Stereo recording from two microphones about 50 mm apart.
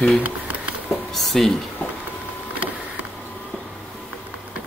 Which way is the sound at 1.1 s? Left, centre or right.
Centre.